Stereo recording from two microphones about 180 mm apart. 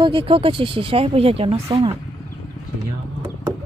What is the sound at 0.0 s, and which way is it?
Speech, 30° right (ahead or behind).